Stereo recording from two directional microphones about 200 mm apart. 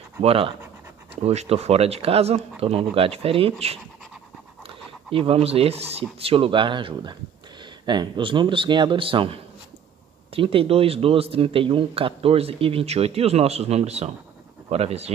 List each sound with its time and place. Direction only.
0.2 s speech: 30° right (ahead or behind)